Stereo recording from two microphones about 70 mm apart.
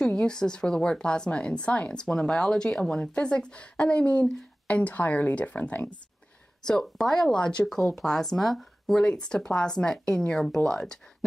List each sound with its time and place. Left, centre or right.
0.0 s speech: centre
6.6 s speech: centre